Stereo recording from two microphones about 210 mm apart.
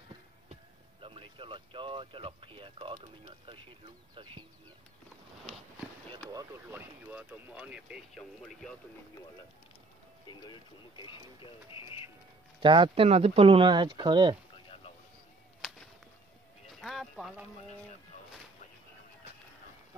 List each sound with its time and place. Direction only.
1.0 s speech: 25° right (ahead or behind)
6.3 s speech: 10° right (ahead or behind)
10.2 s speech: 20° left (ahead or behind)
12.5 s speech: 25° right (ahead or behind)
15.6 s a sound: centre (ahead or behind)
16.8 s speech: centre (ahead or behind)